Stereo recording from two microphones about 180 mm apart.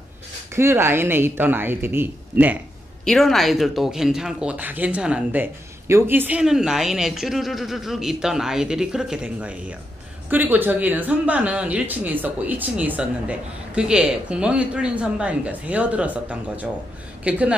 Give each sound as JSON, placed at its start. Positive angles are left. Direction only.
{"t": 0.6, "sound": "speech", "side_deg": -15}
{"t": 3.1, "sound": "a woman's voice", "side_deg": 0}